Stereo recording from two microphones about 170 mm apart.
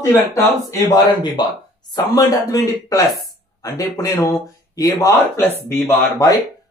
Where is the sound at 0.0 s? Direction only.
15° left (ahead or behind).